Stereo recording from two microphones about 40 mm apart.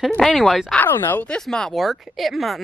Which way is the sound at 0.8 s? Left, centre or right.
Left.